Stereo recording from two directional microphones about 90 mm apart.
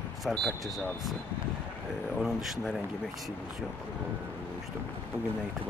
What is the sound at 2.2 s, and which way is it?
Speech, 5° right (ahead or behind).